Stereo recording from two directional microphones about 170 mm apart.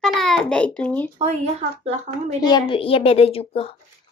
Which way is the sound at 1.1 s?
35° right (ahead or behind).